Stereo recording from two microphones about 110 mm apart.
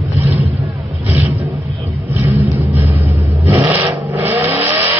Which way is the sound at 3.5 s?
20° right (ahead or behind).